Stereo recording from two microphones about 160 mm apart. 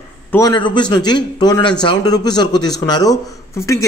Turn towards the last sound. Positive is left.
turn(degrees=20)  # may be behind; listen again after turning